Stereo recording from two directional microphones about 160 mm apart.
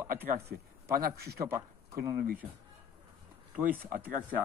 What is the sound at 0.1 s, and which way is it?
Speech, 65° right (ahead or behind).